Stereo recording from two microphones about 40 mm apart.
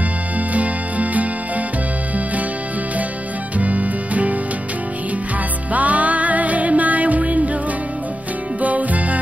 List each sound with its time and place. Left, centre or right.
0.5 s music: right
3.5 s music: right
5.7 s music: right
8.5 s music: right